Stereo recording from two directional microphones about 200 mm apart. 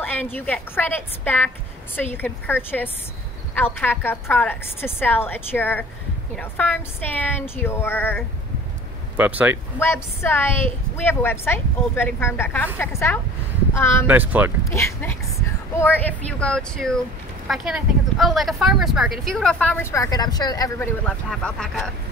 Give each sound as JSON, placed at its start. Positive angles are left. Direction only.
{"t": 0.0, "sound": "a woman's voice", "side_deg": 10}
{"t": 9.1, "sound": "speech", "side_deg": -10}
{"t": 9.8, "sound": "a woman's voice", "side_deg": 10}
{"t": 14.0, "sound": "speech", "side_deg": -10}
{"t": 14.6, "sound": "a woman's voice", "side_deg": 15}
{"t": 21.0, "sound": "speech", "side_deg": 5}